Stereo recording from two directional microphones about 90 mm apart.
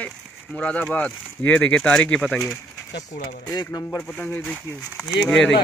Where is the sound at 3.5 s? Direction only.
40° left (ahead or behind).